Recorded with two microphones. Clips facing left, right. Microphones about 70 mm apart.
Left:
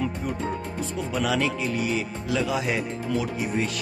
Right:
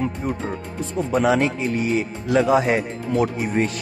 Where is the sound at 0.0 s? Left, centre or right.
Right.